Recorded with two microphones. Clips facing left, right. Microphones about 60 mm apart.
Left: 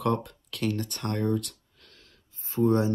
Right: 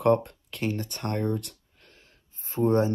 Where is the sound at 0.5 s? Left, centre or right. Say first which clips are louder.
Left 1 dB; right.